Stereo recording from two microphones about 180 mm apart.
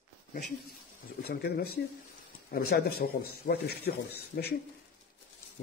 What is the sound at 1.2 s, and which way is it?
Speech, 60° left (ahead or behind).